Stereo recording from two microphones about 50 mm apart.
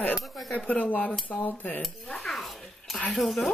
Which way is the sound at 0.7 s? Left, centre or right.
Left.